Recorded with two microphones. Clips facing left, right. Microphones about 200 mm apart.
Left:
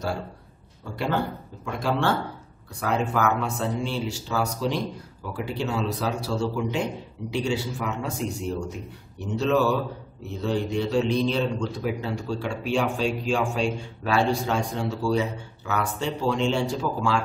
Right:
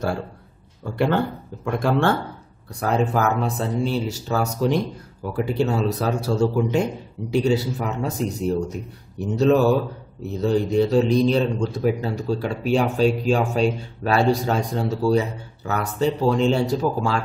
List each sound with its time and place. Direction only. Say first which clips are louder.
0.9 s speech: right 5 dB; 55° right (ahead or behind)
2.8 s a man's voice: right 3 dB; 35° right (ahead or behind)